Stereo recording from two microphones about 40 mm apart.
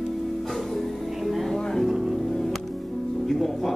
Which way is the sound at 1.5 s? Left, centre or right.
Centre.